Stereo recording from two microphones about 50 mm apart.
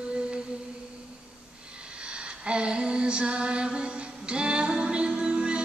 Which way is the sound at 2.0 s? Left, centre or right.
Right.